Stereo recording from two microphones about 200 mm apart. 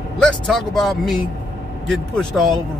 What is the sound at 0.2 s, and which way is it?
Speech, centre (ahead or behind).